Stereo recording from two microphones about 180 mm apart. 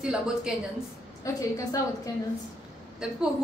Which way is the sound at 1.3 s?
20° left (ahead or behind).